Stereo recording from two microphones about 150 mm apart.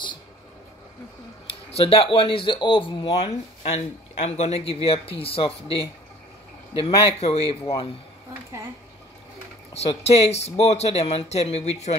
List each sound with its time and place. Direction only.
1.5 s speech: 40° left (ahead or behind)
6.8 s speech: 40° left (ahead or behind)
9.8 s speech: 45° left (ahead or behind)